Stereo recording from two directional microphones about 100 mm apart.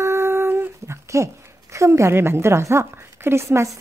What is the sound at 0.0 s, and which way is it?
Speech, 25° right (ahead or behind).